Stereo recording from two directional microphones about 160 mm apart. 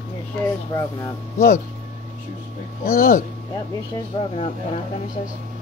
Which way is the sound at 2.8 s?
60° left (ahead or behind).